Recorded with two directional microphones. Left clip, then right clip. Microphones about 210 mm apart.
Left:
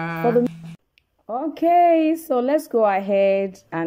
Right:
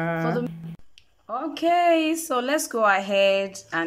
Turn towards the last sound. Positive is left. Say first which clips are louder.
# left 1 dB
turn(degrees=25)  # may be behind; listen again after turning